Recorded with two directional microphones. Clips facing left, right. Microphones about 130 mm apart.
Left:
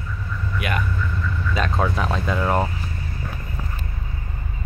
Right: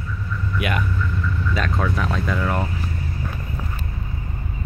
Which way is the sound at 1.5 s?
25° left (ahead or behind).